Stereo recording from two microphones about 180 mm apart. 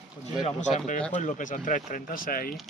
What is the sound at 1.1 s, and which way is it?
Speech, 45° left (ahead or behind).